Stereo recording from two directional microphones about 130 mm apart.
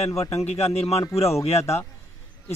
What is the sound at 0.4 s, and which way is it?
Speech, 55° left (ahead or behind).